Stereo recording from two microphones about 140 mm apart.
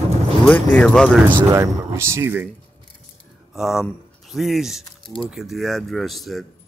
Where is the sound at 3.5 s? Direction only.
5° right (ahead or behind).